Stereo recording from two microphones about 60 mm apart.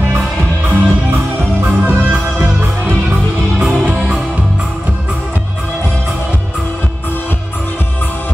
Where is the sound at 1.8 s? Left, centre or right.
Right.